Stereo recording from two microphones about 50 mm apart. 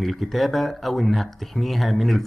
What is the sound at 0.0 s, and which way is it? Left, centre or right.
Speech, centre.